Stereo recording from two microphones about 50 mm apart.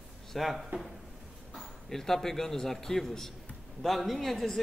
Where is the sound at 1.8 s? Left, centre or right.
Centre.